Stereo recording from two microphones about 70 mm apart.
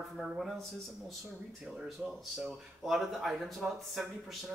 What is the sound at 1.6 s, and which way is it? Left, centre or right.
Speech, centre.